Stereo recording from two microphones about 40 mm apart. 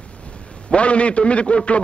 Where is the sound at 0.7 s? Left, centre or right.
Left.